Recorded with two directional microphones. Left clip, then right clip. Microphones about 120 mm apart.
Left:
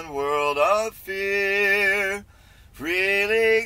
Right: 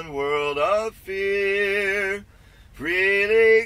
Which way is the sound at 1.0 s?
50° left (ahead or behind).